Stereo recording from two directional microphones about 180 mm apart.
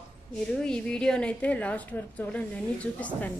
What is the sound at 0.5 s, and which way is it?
A woman's voice, 5° left (ahead or behind).